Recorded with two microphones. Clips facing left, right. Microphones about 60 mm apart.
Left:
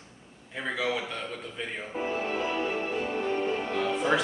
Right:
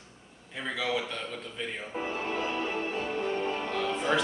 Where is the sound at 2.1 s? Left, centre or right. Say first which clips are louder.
Left 2 dB; left.